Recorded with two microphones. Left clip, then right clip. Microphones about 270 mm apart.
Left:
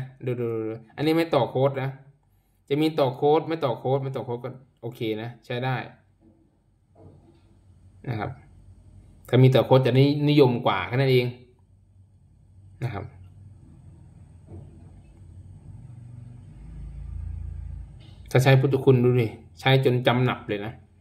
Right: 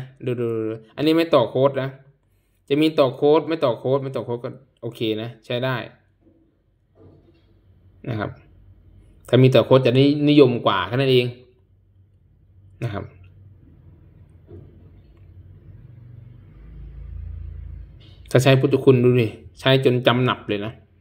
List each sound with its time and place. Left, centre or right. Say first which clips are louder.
0.2 s speech: right 4 dB; centre
3.0 s speech: right 4 dB; centre
8.0 s speech: right 4 dB; centre
12.7 s speech: right 4 dB; centre
18.3 s speech: right 4 dB; centre